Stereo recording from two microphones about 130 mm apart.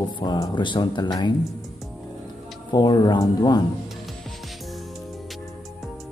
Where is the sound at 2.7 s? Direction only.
35° left (ahead or behind).